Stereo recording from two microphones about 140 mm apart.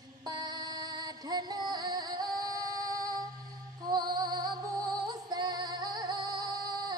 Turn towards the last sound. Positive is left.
turn(degrees=-30)  # may be behind; listen again after turning